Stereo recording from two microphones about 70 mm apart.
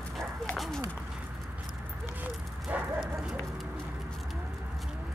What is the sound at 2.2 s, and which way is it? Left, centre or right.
Bow-wow, right.